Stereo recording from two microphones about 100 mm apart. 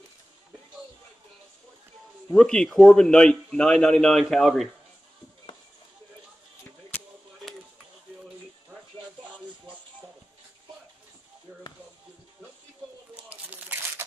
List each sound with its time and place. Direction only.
2.3 s a man's voice: 5° left (ahead or behind)
13.1 s crumpling: 15° right (ahead or behind)